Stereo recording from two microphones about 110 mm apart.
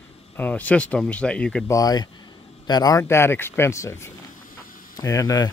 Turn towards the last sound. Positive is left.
turn(degrees=35)  # may be behind; listen again after turning